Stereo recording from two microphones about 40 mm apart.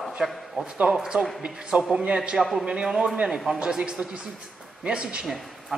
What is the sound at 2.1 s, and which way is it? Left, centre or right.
A man's voice, right.